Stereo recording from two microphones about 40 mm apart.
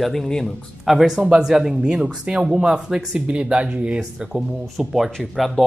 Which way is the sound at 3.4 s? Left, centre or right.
Right.